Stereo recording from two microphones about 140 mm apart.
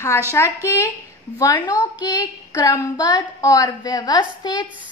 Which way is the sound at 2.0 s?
30° left (ahead or behind).